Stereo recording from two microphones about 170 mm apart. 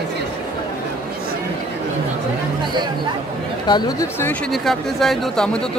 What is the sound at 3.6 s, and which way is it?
Speech, 25° left (ahead or behind).